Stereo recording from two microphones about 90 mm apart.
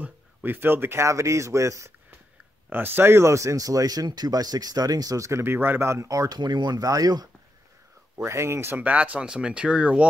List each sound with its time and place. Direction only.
0.0 s a man's voice: 20° right (ahead or behind)
2.7 s speech: 25° right (ahead or behind); by 7.2 s 45° right (ahead or behind)
8.2 s speech: 30° right (ahead or behind); by 10.0 s 15° right (ahead or behind)